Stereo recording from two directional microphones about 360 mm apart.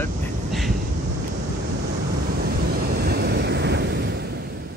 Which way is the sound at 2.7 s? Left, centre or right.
Right.